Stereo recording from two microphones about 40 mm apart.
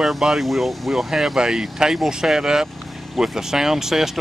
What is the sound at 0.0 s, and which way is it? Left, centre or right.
Speech, centre.